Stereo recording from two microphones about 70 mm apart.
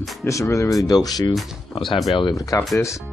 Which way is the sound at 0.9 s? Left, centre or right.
Left.